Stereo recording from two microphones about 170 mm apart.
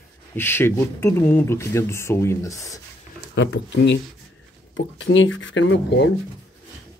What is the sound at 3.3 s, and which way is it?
Speech, 90° left.